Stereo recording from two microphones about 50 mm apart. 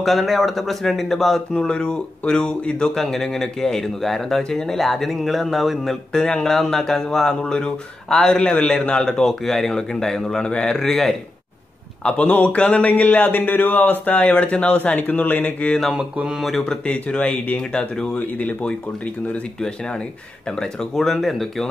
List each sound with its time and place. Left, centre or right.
0.0 s speech: centre
1.5 s speech: centre
6.1 s speech: centre
10.8 s speech: centre
12.0 s a man's voice: left
15.9 s mantra: centre
16.3 s speech: centre
16.8 s speech: left
17.6 s speech: centre
18.1 s speech: left
19.6 s speech: centre